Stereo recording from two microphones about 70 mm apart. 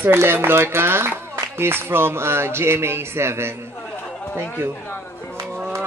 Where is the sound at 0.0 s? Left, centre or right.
Right.